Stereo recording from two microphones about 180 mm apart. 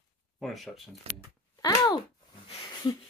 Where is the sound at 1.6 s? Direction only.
20° left (ahead or behind).